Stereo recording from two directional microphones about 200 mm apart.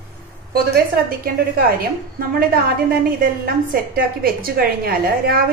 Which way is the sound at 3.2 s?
45° right (ahead or behind).